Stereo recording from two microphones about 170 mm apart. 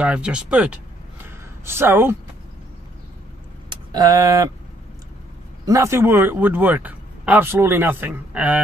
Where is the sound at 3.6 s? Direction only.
20° right (ahead or behind).